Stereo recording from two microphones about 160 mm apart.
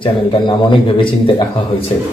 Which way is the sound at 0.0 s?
30° left (ahead or behind).